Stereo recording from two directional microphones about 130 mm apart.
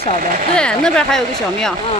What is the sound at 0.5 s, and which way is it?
A woman's voice, 5° left (ahead or behind).